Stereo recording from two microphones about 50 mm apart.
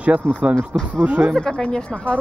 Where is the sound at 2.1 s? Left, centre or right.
Left.